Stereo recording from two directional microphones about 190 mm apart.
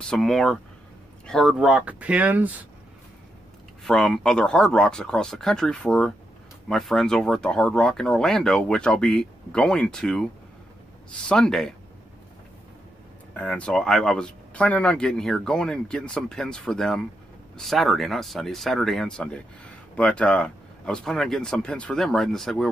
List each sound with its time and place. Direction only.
0.0 s speech: centre (ahead or behind)
3.8 s speech: centre (ahead or behind)
11.2 s speech: 5° left (ahead or behind)
13.3 s speech: 5° left (ahead or behind)